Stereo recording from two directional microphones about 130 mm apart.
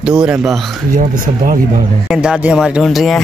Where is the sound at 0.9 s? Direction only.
90° right.